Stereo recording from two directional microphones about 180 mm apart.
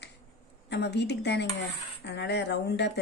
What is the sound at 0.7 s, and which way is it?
A woman's voice, 70° left (ahead or behind).